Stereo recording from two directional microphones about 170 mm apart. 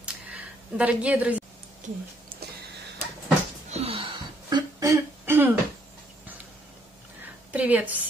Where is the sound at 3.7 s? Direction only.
35° right (ahead or behind); by 5.5 s 15° right (ahead or behind).